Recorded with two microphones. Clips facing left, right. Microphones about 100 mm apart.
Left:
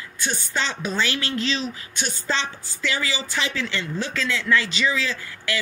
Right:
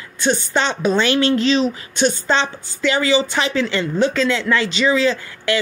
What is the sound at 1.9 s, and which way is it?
Speech, 80° right.